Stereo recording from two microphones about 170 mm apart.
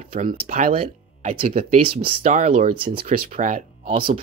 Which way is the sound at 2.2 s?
45° right (ahead or behind).